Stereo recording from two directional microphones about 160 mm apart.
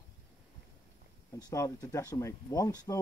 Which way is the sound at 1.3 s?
20° left (ahead or behind).